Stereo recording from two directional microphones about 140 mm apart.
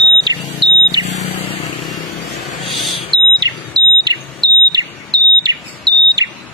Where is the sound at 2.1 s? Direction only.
Centre (ahead or behind).